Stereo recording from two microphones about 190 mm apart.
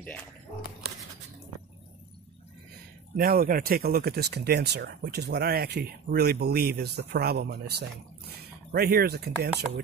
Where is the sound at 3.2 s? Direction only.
50° right (ahead or behind).